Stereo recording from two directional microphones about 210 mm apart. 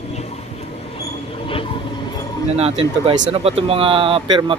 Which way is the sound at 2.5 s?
30° right (ahead or behind).